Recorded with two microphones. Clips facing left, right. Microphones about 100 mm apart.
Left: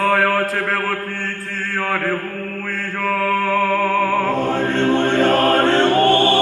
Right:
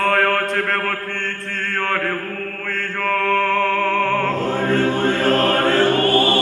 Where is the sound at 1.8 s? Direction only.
5° left (ahead or behind).